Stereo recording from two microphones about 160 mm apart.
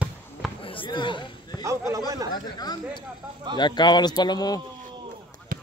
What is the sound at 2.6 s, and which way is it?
Speech, 25° left (ahead or behind).